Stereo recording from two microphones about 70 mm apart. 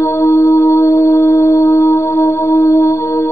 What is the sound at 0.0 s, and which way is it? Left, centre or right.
Music, left.